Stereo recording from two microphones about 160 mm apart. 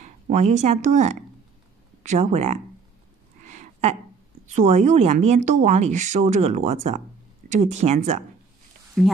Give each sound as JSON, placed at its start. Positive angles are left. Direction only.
{"t": 0.0, "sound": "speech", "side_deg": -45}
{"t": 3.4, "sound": "a sound", "side_deg": -45}
{"t": 4.6, "sound": "speech", "side_deg": -45}
{"t": 9.0, "sound": "speech", "side_deg": 0}